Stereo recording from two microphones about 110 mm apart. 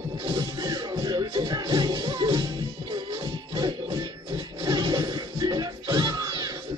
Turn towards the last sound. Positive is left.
turn(degrees=-35)  # may be behind; listen again after turning